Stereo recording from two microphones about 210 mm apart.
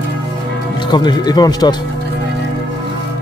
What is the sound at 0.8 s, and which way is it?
Speech, 20° left (ahead or behind).